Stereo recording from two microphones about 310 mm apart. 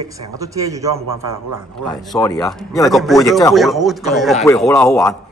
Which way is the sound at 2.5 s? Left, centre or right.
Centre.